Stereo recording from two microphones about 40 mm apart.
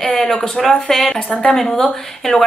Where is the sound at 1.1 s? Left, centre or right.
Left.